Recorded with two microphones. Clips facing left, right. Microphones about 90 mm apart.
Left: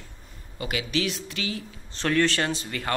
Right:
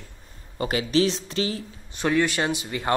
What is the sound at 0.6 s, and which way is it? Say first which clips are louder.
Speech: right 6 dB; 35° right (ahead or behind).